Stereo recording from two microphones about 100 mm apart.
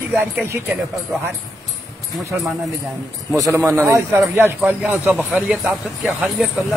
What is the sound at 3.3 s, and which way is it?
Speech, 30° right (ahead or behind).